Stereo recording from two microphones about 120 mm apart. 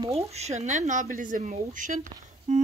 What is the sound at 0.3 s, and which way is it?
Speech, 70° right (ahead or behind).